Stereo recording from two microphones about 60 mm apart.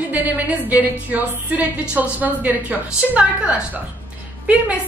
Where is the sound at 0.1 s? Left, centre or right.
Right.